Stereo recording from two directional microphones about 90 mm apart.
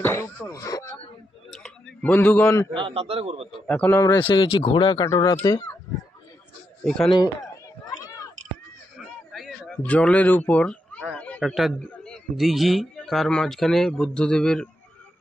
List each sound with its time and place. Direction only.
0.0 s a sound: 30° left (ahead or behind)
0.5 s speech: 40° left (ahead or behind)
1.5 s a sound: 5° left (ahead or behind)
2.1 s a man's voice: 25° left (ahead or behind)
2.7 s a man's voice: 80° right
3.6 s a man's voice: 10° left (ahead or behind)
4.2 s speech: 65° left (ahead or behind)
5.0 s speech: 40° left (ahead or behind)
6.8 s a man's voice: 10° left (ahead or behind)
9.3 s a sound: centre (ahead or behind)
9.7 s speech: 15° left (ahead or behind)
11.1 s a sound: 15° left (ahead or behind)
11.4 s a man's voice: 5° right (ahead or behind)
11.8 s a man's voice: 10° left (ahead or behind)